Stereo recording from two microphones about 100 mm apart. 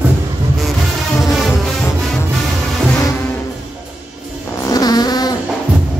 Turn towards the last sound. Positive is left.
turn(degrees=40)  # may be behind; listen again after turning